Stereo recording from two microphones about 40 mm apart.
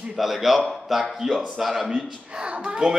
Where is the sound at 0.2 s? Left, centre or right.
Centre.